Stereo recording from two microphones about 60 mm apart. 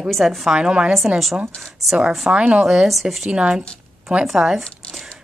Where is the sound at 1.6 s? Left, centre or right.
Centre.